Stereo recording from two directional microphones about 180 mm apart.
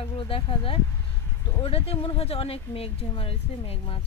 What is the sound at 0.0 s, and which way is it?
Speech, 30° left (ahead or behind).